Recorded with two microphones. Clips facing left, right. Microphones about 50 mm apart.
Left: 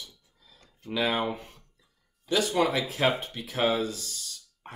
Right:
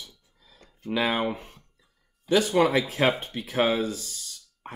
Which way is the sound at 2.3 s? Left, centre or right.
Right.